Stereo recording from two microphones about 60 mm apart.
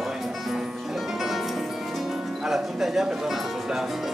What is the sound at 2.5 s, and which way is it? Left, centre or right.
Music, centre.